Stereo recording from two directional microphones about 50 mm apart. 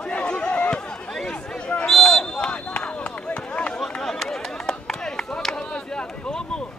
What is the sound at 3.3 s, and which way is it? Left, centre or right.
Run, left.